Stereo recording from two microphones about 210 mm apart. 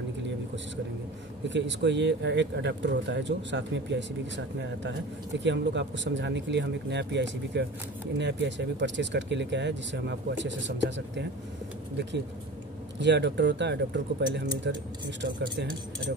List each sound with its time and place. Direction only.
1.5 s speech: 60° right (ahead or behind)
5.4 s speech: 60° right (ahead or behind)
13.0 s speech: 55° right (ahead or behind)